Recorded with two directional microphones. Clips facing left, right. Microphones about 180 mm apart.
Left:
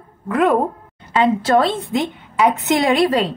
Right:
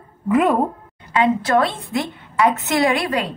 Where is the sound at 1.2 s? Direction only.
25° left (ahead or behind).